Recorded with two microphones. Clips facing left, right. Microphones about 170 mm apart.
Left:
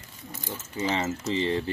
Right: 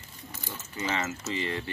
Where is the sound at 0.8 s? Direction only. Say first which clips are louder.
Left 4 dB; 30° left (ahead or behind).